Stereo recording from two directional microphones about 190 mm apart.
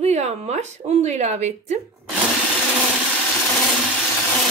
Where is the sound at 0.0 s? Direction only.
35° right (ahead or behind).